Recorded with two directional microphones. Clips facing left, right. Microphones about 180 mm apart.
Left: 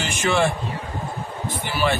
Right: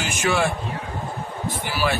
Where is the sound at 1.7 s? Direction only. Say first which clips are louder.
Left 2 dB; 5° right (ahead or behind).